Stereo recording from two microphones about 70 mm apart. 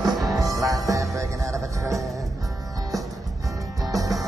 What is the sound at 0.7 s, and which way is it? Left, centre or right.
Music, right.